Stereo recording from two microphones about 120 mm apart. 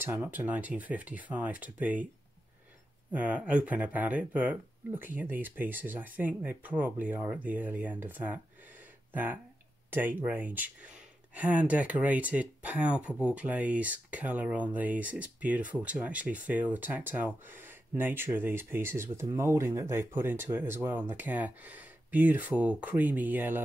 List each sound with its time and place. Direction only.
0.0 s speech: 15° right (ahead or behind)
3.1 s speech: 10° right (ahead or behind)